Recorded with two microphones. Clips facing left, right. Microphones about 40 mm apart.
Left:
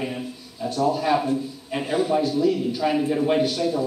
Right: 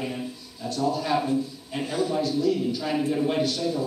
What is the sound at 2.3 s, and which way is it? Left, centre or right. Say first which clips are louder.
Speech: left 2 dB; centre.